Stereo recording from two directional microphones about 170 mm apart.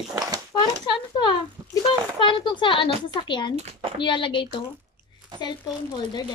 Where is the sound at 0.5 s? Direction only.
30° left (ahead or behind).